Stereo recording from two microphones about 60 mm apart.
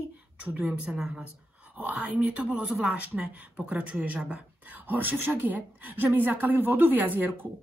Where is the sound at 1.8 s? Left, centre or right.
Right.